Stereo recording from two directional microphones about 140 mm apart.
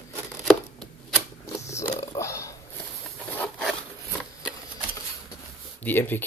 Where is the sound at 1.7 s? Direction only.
20° left (ahead or behind).